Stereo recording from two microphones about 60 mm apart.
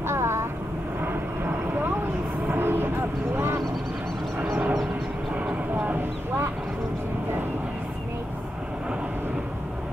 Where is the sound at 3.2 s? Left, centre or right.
Right.